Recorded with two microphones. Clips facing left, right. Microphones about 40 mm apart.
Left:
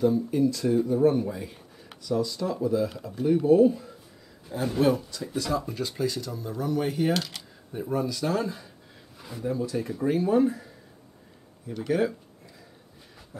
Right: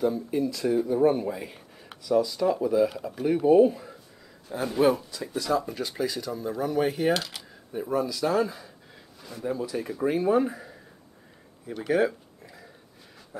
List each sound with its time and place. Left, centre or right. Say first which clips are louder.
0.3 s speech: left 2 dB; centre
4.5 s speech: right 1 dB; centre
11.6 s a sound: right 2 dB; centre